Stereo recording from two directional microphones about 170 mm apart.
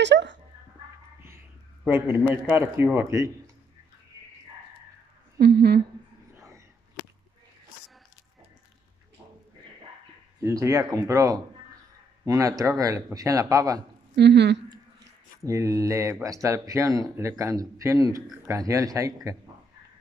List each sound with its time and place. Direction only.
0.0 s speech: 90° right
1.9 s speech: 15° right (ahead or behind)
5.4 s speech: 70° right (ahead or behind)
10.4 s speech: 15° right (ahead or behind)
14.1 s speech: 90° right
15.4 s speech: 20° right (ahead or behind)